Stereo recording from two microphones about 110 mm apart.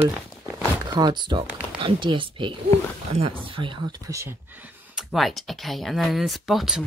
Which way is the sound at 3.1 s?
60° right (ahead or behind).